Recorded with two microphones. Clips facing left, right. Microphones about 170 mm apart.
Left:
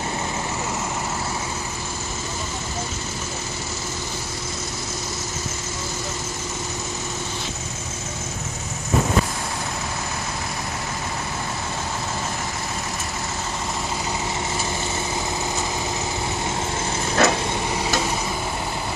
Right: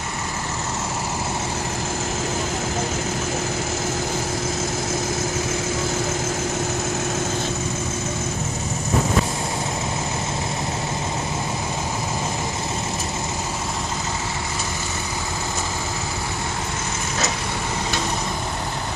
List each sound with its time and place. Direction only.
17.2 s vehicle: 60° left (ahead or behind)